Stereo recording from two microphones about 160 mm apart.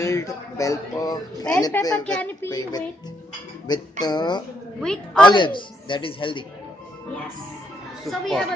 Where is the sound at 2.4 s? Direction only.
25° left (ahead or behind).